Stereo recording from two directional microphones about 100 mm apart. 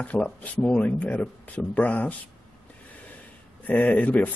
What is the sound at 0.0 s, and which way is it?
Speech, 15° left (ahead or behind).